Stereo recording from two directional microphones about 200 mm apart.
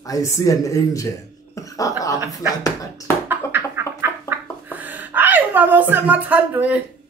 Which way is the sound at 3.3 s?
10° right (ahead or behind).